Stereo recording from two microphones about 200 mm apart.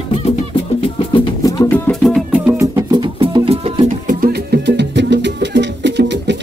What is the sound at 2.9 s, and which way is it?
Music, 20° right (ahead or behind).